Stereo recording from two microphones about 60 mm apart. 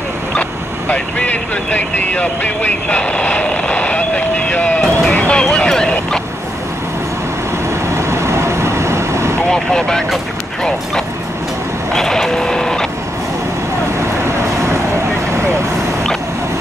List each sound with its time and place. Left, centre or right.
0.4 s speech: left
5.1 s vehicle: left
7.9 s vehicle: right
9.5 s speech: centre
11.9 s printer: centre